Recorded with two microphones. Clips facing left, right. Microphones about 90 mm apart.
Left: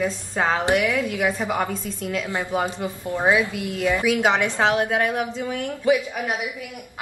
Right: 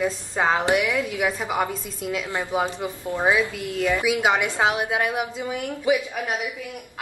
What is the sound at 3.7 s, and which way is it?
Speech, 15° left (ahead or behind).